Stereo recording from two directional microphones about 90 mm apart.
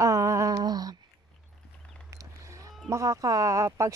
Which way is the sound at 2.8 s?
35° right (ahead or behind).